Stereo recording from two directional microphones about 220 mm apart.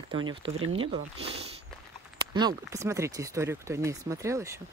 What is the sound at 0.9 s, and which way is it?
Speech, 25° right (ahead or behind).